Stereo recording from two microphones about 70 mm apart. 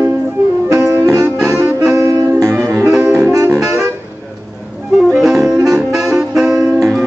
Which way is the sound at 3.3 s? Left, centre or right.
Right.